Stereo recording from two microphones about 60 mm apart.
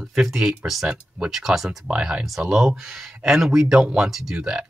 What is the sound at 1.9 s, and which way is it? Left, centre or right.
Speech, centre.